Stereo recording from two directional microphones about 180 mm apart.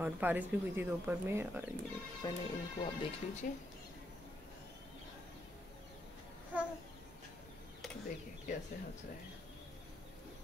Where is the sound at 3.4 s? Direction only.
50° left (ahead or behind).